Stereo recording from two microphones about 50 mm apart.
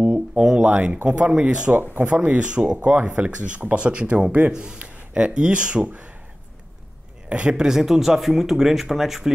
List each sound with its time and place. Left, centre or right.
0.1 s speech: centre
2.0 s speech: right
7.2 s speech: right